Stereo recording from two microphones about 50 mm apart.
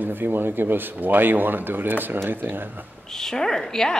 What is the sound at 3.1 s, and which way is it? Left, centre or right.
Speech, centre.